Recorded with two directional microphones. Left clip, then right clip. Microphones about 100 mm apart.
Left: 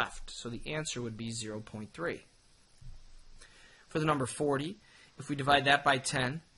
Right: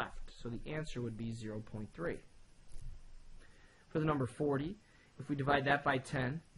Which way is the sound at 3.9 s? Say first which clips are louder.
Left 5 dB; 20° left (ahead or behind).